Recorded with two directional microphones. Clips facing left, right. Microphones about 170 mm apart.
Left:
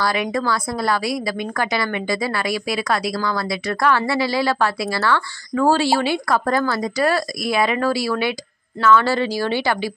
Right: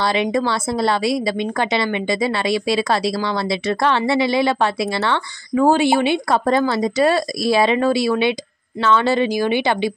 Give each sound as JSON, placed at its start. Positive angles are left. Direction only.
{"t": 0.0, "sound": "a woman's voice", "side_deg": -25}